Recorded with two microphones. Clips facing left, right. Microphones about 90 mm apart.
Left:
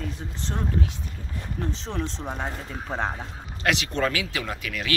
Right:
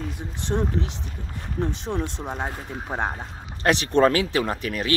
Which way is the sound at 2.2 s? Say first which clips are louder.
Right 2 dB; 15° right (ahead or behind).